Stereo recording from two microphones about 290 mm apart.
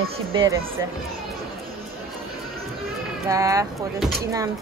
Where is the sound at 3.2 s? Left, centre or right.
Centre.